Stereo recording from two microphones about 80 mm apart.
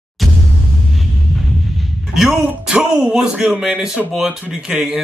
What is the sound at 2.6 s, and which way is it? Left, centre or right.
Speech, centre.